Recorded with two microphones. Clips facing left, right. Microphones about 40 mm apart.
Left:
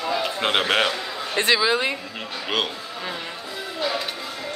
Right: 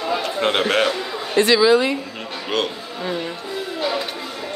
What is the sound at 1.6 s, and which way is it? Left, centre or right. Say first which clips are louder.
Speech: right 6 dB; left.